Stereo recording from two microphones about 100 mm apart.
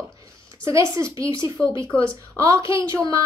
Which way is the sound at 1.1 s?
35° right (ahead or behind).